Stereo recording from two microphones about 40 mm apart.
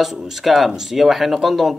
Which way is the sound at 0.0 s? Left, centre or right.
Centre.